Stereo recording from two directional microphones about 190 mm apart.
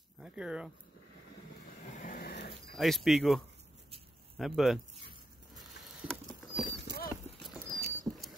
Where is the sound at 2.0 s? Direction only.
50° left (ahead or behind).